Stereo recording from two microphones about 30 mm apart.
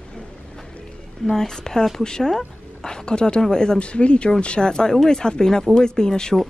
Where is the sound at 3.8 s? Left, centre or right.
Left.